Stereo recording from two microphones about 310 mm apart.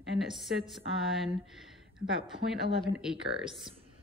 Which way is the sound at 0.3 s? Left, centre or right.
Centre.